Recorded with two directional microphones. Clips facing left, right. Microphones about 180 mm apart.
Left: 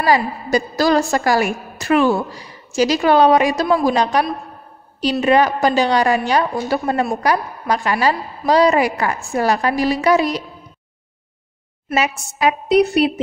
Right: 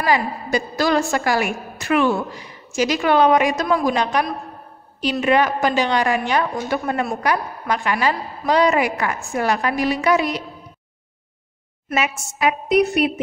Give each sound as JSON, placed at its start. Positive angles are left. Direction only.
{"t": 0.0, "sound": "a woman's voice", "side_deg": 40}
{"t": 11.9, "sound": "a woman's voice", "side_deg": 35}